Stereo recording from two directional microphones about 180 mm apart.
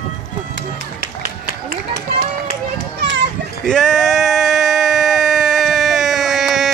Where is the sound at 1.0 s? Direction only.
55° right (ahead or behind).